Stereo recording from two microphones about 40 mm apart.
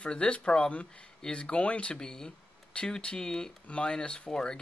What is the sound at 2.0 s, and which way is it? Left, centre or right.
Speech, centre.